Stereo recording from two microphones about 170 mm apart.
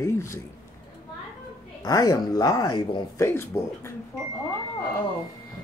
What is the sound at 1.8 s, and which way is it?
Speech, 20° left (ahead or behind).